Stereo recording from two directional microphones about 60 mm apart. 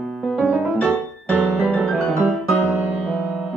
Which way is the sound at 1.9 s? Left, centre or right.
Centre.